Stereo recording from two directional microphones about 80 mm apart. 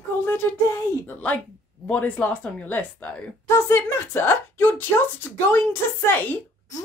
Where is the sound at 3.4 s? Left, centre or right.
Left.